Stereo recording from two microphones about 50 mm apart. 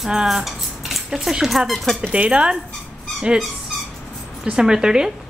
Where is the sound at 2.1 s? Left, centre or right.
Right.